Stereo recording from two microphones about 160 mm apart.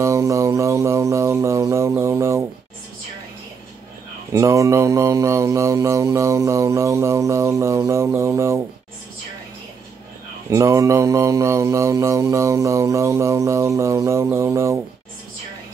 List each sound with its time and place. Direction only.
0.0 s music: 20° right (ahead or behind)
4.3 s mantra: 20° right (ahead or behind)
10.5 s mantra: 20° right (ahead or behind)